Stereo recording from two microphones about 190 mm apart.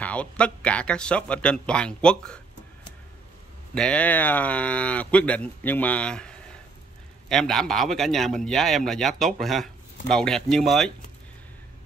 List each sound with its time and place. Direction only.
0.0 s a man's voice: 5° left (ahead or behind)
3.7 s a man's voice: 5° left (ahead or behind)